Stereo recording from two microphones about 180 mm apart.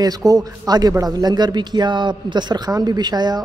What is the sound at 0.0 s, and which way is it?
A man's voice, 20° right (ahead or behind).